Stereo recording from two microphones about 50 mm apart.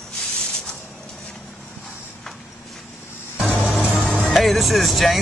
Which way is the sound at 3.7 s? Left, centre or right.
Left.